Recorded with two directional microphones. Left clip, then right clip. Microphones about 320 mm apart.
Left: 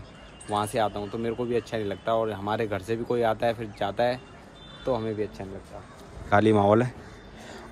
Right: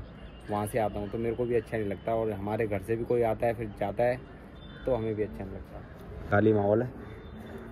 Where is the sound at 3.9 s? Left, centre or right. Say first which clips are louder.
Left 1 dB; left.